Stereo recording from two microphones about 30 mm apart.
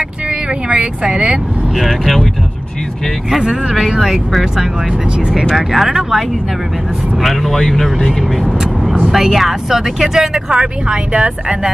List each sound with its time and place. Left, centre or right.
0.7 s speech: right
1.9 s speech: centre
3.3 s speech: right
5.7 s speech: centre
7.2 s speech: centre
9.1 s speech: centre
10.5 s speech: right